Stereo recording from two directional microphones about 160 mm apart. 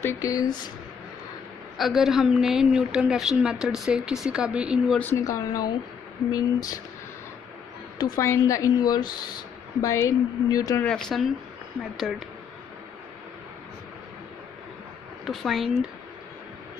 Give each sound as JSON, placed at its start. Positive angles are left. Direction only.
{"t": 0.0, "sound": "a woman's voice", "side_deg": 20}
{"t": 1.8, "sound": "a woman's voice", "side_deg": 0}
{"t": 4.9, "sound": "a woman's voice", "side_deg": 10}
{"t": 8.0, "sound": "a woman's voice", "side_deg": 20}
{"t": 10.8, "sound": "a woman's voice", "side_deg": 5}
{"t": 15.2, "sound": "a woman's voice", "side_deg": 0}